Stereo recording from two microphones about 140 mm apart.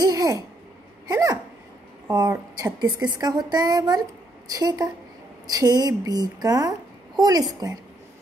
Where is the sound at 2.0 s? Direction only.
25° right (ahead or behind).